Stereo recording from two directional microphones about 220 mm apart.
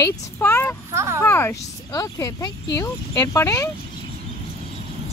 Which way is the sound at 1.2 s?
10° left (ahead or behind).